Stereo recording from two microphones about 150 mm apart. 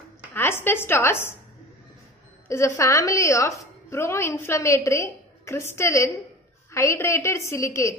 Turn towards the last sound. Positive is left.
turn(degrees=20)  # may be behind; listen again after turning